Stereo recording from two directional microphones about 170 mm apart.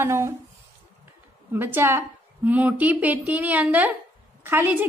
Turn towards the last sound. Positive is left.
turn(degrees=-10)  # may be behind; listen again after turning